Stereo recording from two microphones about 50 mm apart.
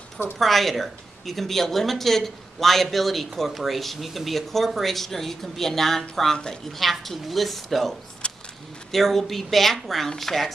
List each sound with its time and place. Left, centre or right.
0.4 s speech: centre
8.2 s a sound: centre
8.9 s speech: centre